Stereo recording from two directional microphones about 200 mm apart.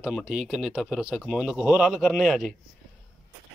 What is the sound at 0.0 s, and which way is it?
Speech, centre (ahead or behind).